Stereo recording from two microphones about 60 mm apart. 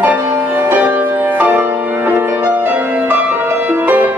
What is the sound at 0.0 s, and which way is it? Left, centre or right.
Music, right.